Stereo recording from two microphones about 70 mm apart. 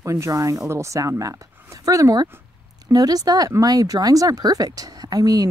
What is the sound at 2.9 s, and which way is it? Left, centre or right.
A woman's voice, right.